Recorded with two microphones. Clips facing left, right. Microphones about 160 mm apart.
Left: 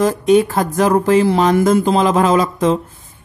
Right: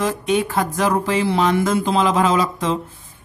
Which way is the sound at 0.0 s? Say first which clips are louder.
Left 7 dB; 40° left (ahead or behind).